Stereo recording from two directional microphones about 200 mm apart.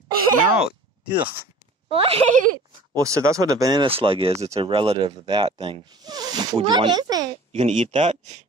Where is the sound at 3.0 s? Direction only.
15° right (ahead or behind).